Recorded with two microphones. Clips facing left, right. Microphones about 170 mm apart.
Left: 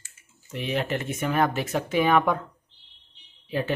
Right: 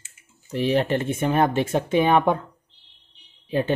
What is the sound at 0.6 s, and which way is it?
Speech, 35° right (ahead or behind).